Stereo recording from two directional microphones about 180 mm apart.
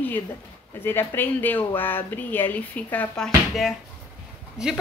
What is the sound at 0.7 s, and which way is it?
A woman's voice, 10° left (ahead or behind).